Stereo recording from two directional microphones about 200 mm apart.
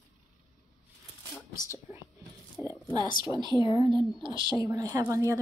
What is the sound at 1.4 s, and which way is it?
Whispering, 15° left (ahead or behind).